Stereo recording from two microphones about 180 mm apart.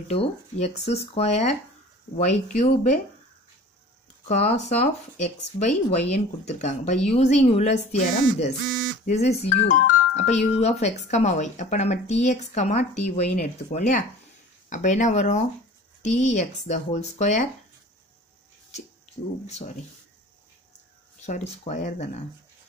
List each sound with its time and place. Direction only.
0.1 s speech: 35° left (ahead or behind)
4.3 s speech: 40° left (ahead or behind)
21.2 s speech: 40° left (ahead or behind)